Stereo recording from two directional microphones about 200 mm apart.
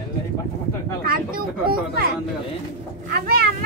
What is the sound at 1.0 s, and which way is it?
Speech, 45° right (ahead or behind).